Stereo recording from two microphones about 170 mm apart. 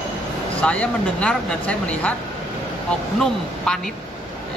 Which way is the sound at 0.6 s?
5° left (ahead or behind).